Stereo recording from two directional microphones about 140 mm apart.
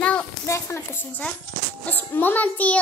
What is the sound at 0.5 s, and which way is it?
A child's voice, 20° left (ahead or behind).